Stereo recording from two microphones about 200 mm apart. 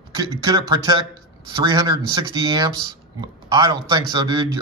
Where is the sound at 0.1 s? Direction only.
20° right (ahead or behind).